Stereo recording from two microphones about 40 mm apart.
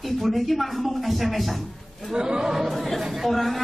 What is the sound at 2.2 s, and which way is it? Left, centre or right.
Speech, centre.